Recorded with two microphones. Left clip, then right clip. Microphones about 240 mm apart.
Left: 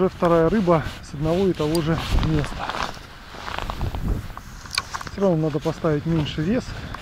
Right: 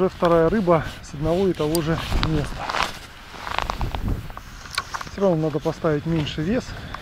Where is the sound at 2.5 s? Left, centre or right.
Centre.